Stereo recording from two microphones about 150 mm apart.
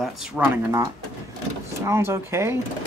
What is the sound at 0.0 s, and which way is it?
Speech, 5° right (ahead or behind).